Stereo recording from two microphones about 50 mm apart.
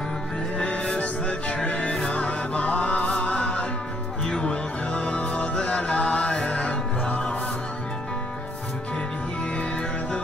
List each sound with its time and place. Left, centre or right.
0.6 s music: left
9.6 s music: left